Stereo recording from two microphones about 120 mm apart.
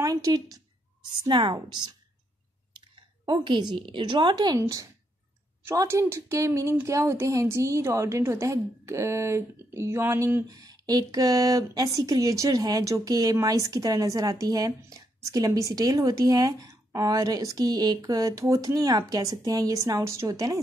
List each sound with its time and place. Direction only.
0.0 s a woman's voice: 30° right (ahead or behind)
1.2 s a woman's voice: 40° right (ahead or behind)
3.4 s a woman's voice: 40° right (ahead or behind)